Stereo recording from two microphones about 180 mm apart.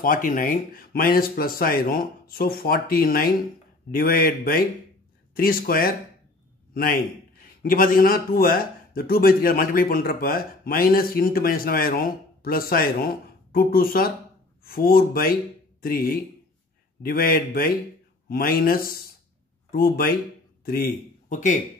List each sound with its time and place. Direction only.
0.0 s a man's voice: 50° left (ahead or behind)